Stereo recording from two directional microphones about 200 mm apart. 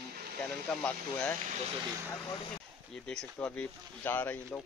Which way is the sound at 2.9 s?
5° left (ahead or behind).